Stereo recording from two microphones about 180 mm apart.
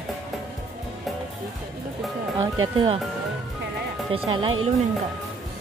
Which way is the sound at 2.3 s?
25° right (ahead or behind).